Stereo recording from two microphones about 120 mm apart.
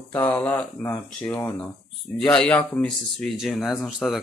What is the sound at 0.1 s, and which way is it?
Speech, 15° left (ahead or behind).